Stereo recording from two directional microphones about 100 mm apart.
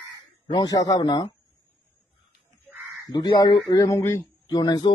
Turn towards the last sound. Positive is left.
turn(degrees=40)  # may be behind; listen again after turning